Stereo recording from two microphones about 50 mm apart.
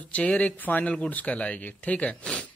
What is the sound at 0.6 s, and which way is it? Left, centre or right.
Speech, left.